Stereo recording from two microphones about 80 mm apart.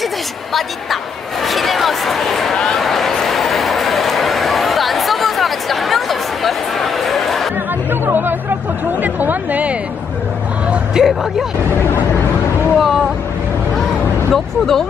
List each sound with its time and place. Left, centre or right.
0.5 s speech: centre
1.4 s a sound: centre
7.9 s music: right
9.0 s speech: right
10.7 s vehicle: centre
12.7 s speech: centre
14.3 s speech: centre